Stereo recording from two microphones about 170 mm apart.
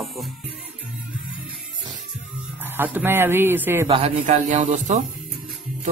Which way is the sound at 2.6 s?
10° right (ahead or behind).